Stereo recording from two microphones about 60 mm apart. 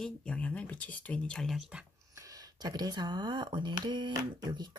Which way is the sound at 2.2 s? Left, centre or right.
Right.